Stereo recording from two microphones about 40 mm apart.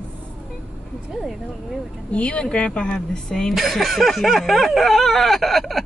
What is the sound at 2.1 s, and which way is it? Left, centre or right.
Speech, left.